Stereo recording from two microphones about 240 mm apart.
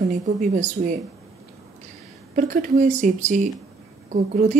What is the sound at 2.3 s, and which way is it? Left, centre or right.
Speech, right.